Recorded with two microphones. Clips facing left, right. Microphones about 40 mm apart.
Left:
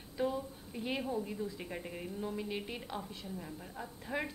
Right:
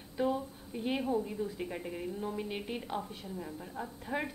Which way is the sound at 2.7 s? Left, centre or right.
Centre.